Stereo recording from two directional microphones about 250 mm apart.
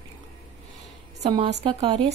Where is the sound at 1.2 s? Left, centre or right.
Right.